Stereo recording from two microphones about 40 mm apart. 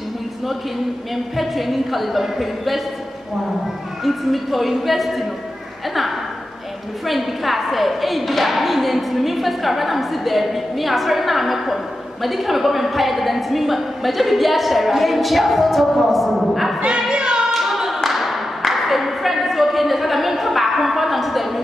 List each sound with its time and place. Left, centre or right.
1.1 s a woman's voice: centre
4.0 s a woman's voice: centre
7.1 s a woman's voice: centre
17.1 s singing: right
17.5 s clapping: centre